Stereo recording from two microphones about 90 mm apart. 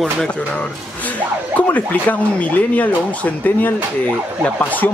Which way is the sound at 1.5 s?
20° left (ahead or behind).